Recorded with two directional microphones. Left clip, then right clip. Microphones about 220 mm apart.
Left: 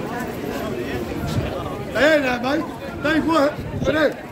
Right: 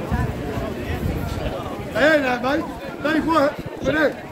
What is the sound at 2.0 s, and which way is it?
Speech, 35° left (ahead or behind).